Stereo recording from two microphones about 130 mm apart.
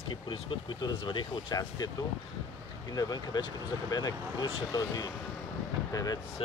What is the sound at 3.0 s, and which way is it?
Speech, 30° left (ahead or behind).